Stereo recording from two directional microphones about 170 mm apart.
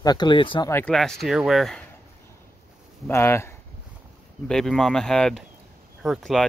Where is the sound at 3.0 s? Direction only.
15° left (ahead or behind).